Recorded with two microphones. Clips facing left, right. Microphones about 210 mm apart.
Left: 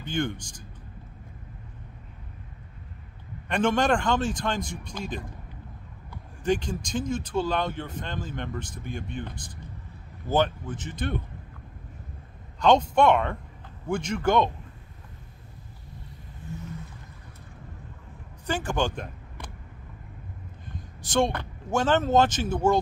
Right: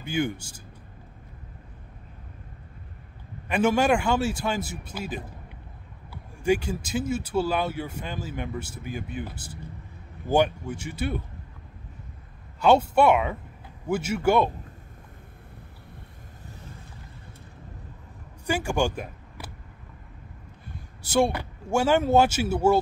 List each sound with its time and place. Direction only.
0.0 s speech: 10° right (ahead or behind)
3.4 s speech: 5° right (ahead or behind)
6.4 s speech: 10° right (ahead or behind)
12.5 s speech: 10° right (ahead or behind)
18.5 s speech: 10° right (ahead or behind)
20.7 s a man's voice: 10° right (ahead or behind)